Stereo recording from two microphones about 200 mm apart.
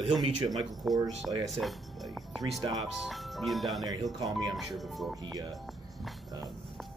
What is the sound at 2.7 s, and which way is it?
Speech, centre (ahead or behind).